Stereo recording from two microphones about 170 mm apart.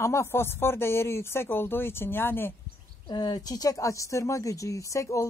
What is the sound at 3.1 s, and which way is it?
Speech, 25° left (ahead or behind).